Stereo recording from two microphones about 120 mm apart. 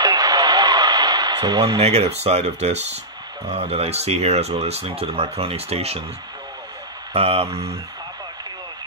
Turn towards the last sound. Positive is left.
turn(degrees=-55)  # may be behind; listen again after turning